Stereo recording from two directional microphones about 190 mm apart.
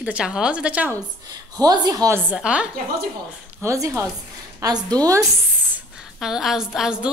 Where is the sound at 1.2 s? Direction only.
20° right (ahead or behind).